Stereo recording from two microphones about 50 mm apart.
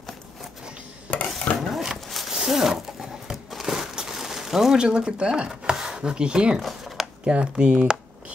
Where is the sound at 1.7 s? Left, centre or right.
Centre.